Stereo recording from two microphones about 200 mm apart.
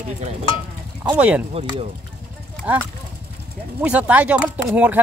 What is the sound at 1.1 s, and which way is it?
Speech, 5° right (ahead or behind).